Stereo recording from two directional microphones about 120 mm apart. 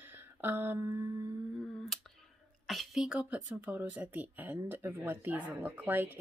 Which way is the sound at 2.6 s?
Centre (ahead or behind).